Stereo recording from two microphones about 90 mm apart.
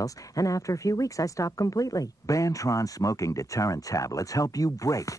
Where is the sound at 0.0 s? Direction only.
40° left (ahead or behind).